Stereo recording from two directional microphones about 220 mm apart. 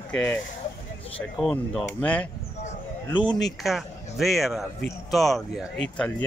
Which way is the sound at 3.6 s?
Centre (ahead or behind).